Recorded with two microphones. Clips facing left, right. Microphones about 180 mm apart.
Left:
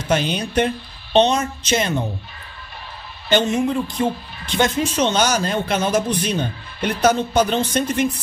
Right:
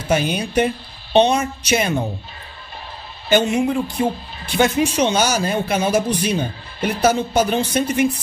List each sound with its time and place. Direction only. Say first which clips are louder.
0.0 s speech: right 1 dB; 10° right (ahead or behind)
3.3 s speech: right 1 dB; 10° right (ahead or behind)